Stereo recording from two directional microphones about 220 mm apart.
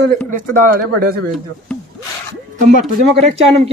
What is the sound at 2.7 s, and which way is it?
Speech, 30° right (ahead or behind).